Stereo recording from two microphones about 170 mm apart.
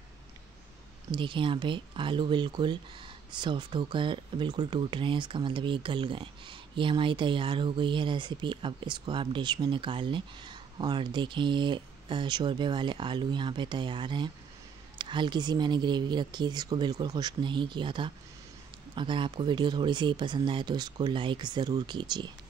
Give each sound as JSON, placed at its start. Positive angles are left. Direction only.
{"t": 1.1, "sound": "speech", "side_deg": -30}